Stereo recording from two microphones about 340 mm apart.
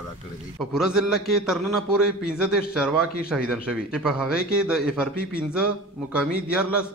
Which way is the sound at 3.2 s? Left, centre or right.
Centre.